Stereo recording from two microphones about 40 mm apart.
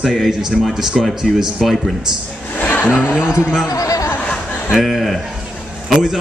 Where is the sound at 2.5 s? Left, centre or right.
Left.